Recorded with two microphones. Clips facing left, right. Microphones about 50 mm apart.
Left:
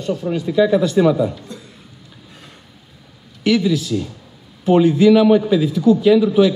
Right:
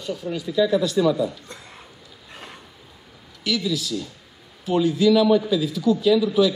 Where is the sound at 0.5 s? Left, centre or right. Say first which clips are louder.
Left 5 dB; left.